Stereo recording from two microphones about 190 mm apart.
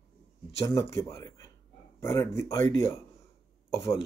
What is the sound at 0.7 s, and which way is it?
Speech, 15° left (ahead or behind).